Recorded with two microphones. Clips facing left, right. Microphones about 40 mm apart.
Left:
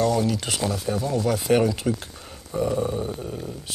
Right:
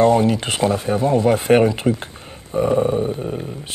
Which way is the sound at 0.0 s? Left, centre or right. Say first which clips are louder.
Right 7 dB; right.